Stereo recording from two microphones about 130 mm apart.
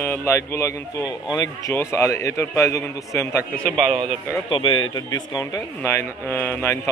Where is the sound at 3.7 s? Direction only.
40° right (ahead or behind).